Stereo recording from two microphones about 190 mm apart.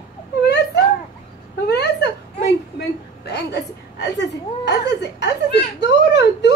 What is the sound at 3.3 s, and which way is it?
Chuckle, 60° left (ahead or behind).